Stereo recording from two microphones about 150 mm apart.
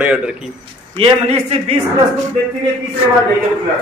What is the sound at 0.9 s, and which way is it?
Speech, 40° right (ahead or behind).